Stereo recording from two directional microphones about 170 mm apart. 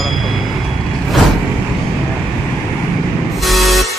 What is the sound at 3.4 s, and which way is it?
Music, centre (ahead or behind).